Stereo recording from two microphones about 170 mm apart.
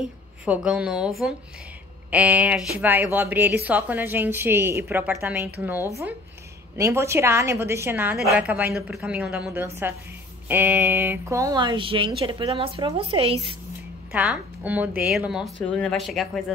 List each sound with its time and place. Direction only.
0.5 s a woman's voice: 5° right (ahead or behind); by 13.6 s 35° right (ahead or behind)
14.1 s a woman's voice: 10° right (ahead or behind)